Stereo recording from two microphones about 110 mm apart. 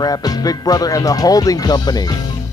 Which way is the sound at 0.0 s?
35° left (ahead or behind).